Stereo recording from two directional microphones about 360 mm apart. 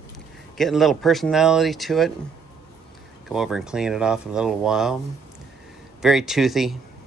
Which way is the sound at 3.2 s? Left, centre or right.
Centre.